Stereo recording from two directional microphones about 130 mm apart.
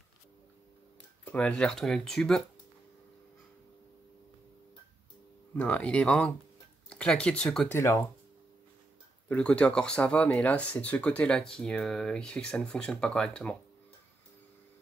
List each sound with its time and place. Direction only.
1.2 s speech: 10° left (ahead or behind)
5.6 s speech: 10° left (ahead or behind)
7.6 s speech: 20° left (ahead or behind)
9.3 s speech: 10° left (ahead or behind)